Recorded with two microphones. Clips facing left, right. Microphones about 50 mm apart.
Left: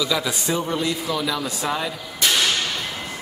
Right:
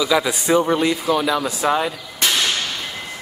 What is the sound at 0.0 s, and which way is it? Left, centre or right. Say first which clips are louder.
A man's voice: right 5 dB; centre.